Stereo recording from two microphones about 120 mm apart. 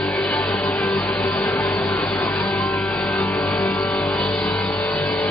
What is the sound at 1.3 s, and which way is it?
Music, 20° left (ahead or behind).